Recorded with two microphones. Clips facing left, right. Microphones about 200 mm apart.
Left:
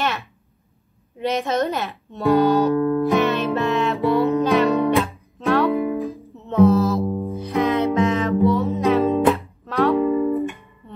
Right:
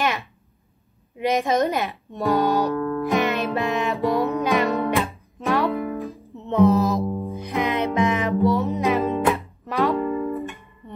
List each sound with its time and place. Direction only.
0.0 s a sound: 15° right (ahead or behind)
1.2 s a woman's voice: 15° right (ahead or behind)
2.7 s music: 15° left (ahead or behind)
3.2 s music: 15° right (ahead or behind)
4.6 s music: 15° left (ahead or behind)
5.0 s music: 15° right (ahead or behind)
5.7 s music: 15° left (ahead or behind)
6.3 s mantra: 15° right (ahead or behind)
7.3 s music: 15° right (ahead or behind)
9.9 s music: 15° left (ahead or behind)